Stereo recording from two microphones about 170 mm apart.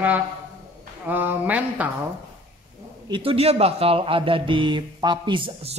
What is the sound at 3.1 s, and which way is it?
Speech, 35° right (ahead or behind).